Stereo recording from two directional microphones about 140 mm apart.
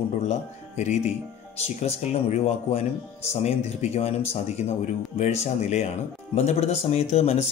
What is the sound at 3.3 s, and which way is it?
Speech, 50° left (ahead or behind).